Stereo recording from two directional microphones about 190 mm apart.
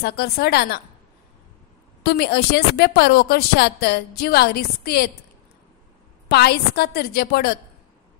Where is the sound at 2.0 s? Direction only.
60° left (ahead or behind).